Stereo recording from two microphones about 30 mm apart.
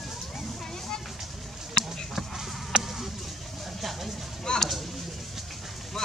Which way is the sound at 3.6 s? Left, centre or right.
Centre.